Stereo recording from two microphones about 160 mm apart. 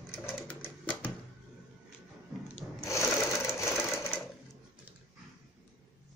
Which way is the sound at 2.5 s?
20° left (ahead or behind).